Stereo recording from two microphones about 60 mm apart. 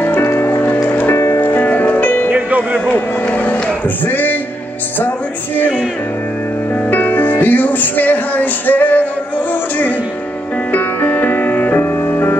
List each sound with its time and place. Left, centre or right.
0.0 s music: left
1.1 s music: left
1.4 s music: left
2.2 s music: right
2.9 s vehicle: left
4.0 s speech: left
6.9 s music: left
10.7 s music: left